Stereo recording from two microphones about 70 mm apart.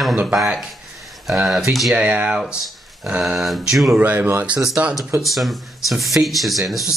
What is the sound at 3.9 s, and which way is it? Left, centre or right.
Speech, right.